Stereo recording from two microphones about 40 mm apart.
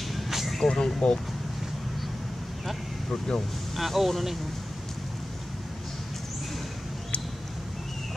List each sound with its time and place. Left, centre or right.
0.1 s vehicle: centre
0.6 s speech: centre
3.1 s speech: left
3.7 s speech: centre